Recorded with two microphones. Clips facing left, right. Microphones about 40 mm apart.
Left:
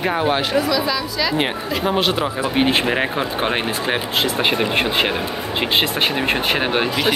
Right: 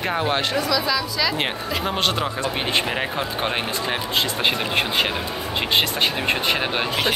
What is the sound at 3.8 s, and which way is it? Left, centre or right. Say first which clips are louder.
Speech: left 2 dB; left.